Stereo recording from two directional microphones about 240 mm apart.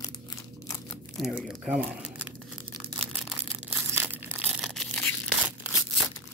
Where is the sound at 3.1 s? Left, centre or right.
Centre.